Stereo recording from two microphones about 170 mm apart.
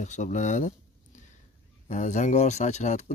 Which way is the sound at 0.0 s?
45° left (ahead or behind).